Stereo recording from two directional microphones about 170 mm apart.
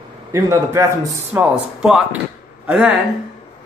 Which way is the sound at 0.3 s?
15° right (ahead or behind).